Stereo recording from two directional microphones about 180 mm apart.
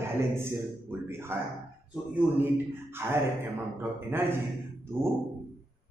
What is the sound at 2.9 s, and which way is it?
Speech, 15° right (ahead or behind).